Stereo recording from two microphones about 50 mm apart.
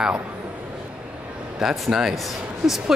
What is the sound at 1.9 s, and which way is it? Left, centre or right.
Speech, centre.